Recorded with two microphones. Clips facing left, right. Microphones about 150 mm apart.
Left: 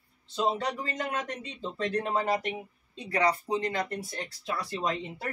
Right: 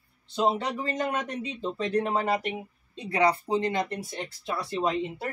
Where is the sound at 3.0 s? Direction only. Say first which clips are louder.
Right 3 dB; 25° right (ahead or behind).